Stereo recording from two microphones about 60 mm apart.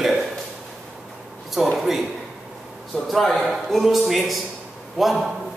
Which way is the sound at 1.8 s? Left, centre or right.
Centre.